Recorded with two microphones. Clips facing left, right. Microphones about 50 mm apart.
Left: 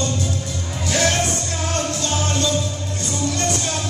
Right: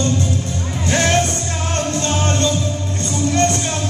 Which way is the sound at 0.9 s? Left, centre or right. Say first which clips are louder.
Right 3 dB; right.